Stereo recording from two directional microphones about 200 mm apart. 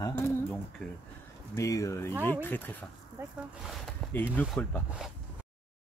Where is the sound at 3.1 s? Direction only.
5° right (ahead or behind).